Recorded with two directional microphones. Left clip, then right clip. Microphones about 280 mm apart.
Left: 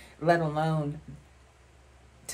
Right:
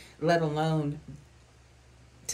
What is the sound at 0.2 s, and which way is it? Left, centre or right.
Speech, centre.